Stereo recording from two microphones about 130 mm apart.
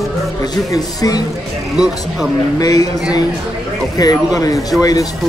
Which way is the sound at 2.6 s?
30° left (ahead or behind).